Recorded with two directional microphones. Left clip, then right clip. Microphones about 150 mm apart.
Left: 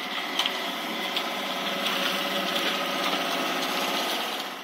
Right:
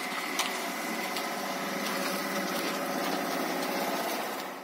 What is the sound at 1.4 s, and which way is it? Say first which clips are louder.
Printer: left 5 dB; 10° right (ahead or behind).